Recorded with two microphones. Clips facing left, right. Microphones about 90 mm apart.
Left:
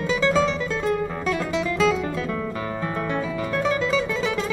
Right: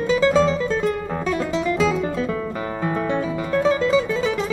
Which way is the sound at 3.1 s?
25° right (ahead or behind).